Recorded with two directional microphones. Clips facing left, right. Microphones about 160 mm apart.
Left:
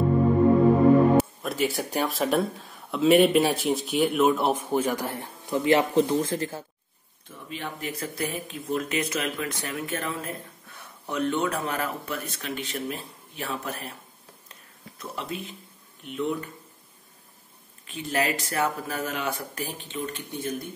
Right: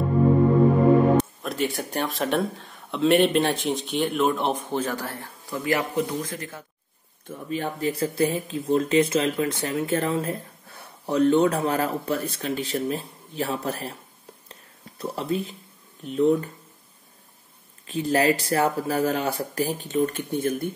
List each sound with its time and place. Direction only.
1.1 s speech: centre (ahead or behind); by 6.6 s 30° left (ahead or behind)
7.2 s speech: 40° right (ahead or behind)
14.5 s a sound: 30° right (ahead or behind)
16.0 s speech: 35° right (ahead or behind)
17.8 s speech: 35° right (ahead or behind); by 20.5 s 50° right (ahead or behind)